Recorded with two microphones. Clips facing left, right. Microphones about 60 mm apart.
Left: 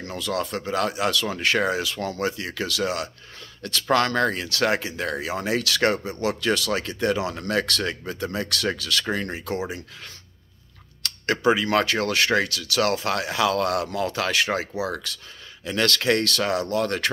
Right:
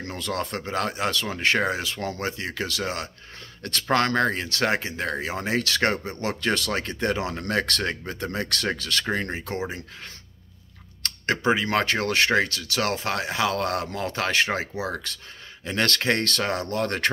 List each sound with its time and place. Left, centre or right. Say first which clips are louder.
0.0 s speech: left 2 dB; right
11.0 s speech: left 1 dB; right